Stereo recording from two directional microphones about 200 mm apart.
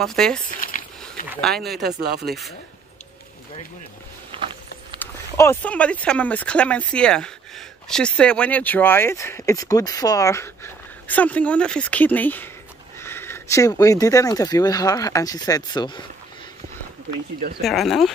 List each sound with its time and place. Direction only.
0.0 s speech: 5° left (ahead or behind)
0.5 s a sound: 45° left (ahead or behind)
2.0 s speech: 55° right (ahead or behind)
4.3 s a sound: 25° right (ahead or behind)
5.0 s speech: 10° left (ahead or behind)
17.6 s speech: centre (ahead or behind)